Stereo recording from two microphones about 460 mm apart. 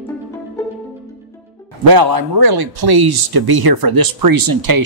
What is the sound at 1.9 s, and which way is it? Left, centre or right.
Speech, right.